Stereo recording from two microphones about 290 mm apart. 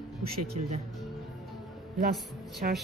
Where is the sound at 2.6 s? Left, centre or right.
Right.